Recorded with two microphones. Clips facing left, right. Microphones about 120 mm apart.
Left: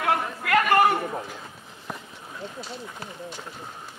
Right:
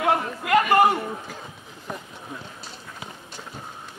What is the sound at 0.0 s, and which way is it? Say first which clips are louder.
Chatter: right 2 dB; 25° right (ahead or behind).